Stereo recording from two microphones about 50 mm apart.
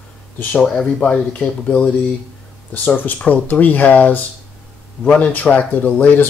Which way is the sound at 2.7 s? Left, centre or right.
Left.